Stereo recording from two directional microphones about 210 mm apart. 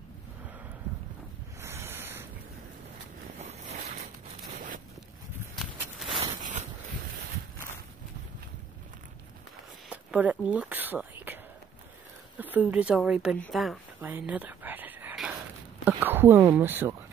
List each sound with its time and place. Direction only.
1.6 s ocean: 10° right (ahead or behind)
3.3 s boat: 30° right (ahead or behind)
4.6 s zipper: 40° right (ahead or behind)
6.0 s a sound: 25° right (ahead or behind)
6.4 s a sound: 35° right (ahead or behind)
9.8 s a sound: 5° right (ahead or behind)
12.4 s speech: 10° right (ahead or behind)
13.4 s dog: centre (ahead or behind)
15.8 s speech: 10° right (ahead or behind)